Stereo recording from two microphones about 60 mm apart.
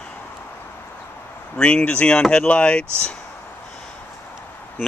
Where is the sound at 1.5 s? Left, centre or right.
Centre.